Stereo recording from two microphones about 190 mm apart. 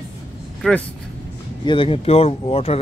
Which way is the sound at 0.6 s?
5° left (ahead or behind).